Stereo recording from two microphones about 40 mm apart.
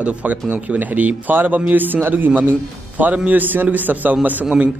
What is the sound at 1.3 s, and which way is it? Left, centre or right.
A man's voice, right.